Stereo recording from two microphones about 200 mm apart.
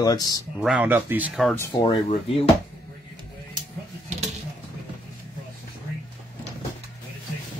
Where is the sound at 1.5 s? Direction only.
15° left (ahead or behind).